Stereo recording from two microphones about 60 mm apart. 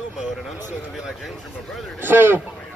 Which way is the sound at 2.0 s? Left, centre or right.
Right.